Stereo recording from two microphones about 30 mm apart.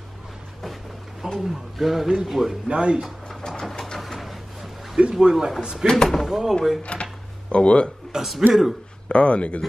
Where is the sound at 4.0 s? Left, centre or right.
Centre.